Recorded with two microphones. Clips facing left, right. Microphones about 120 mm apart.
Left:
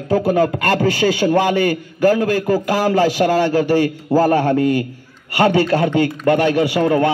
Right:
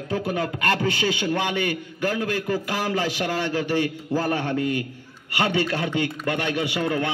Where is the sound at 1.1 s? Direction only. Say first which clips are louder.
Left 9 dB; 40° left (ahead or behind).